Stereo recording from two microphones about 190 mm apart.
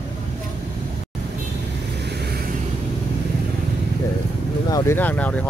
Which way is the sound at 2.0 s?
60° right (ahead or behind).